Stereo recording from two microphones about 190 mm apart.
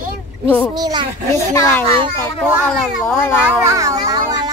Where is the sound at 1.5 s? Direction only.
15° left (ahead or behind).